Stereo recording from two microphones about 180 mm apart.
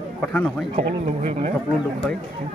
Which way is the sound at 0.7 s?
35° right (ahead or behind).